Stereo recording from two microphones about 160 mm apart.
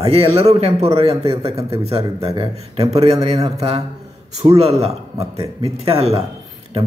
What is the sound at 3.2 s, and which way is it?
Speech, 20° right (ahead or behind).